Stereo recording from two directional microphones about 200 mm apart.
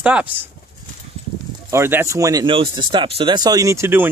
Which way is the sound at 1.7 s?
10° right (ahead or behind).